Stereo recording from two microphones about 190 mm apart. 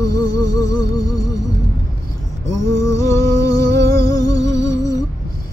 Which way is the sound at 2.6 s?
15° left (ahead or behind).